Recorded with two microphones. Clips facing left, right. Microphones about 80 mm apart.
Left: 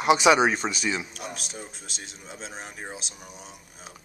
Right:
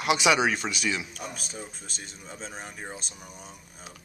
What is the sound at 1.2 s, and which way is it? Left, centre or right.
Speech, centre.